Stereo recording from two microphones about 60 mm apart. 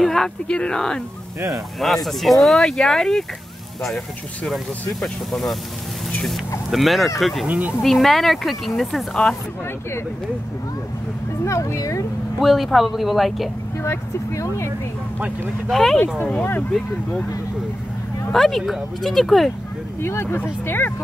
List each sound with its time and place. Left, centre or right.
0.0 s speech: centre
1.8 s speech: centre
5.0 s speech: centre
6.7 s speech: centre
7.4 s speech: right
7.8 s speech: centre
9.1 s speech: centre
11.4 s speech: left
12.4 s speech: centre
13.7 s speech: left
15.7 s speech: centre
18.3 s speech: centre
20.0 s speech: left